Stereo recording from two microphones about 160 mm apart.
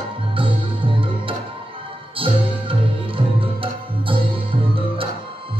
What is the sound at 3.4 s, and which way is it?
Music, 35° right (ahead or behind).